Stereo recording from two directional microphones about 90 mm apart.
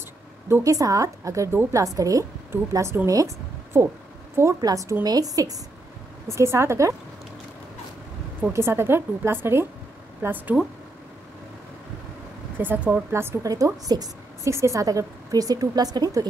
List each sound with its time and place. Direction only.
0.5 s a woman's voice: 40° right (ahead or behind)
4.6 s a woman's voice: 45° right (ahead or behind)
6.2 s a woman's voice: 30° right (ahead or behind)
8.4 s speech: 30° right (ahead or behind)
12.5 s speech: 20° right (ahead or behind)
13.1 s speech: 30° right (ahead or behind)
13.8 s a woman's voice: 45° right (ahead or behind)
14.5 s a woman's voice: 35° right (ahead or behind)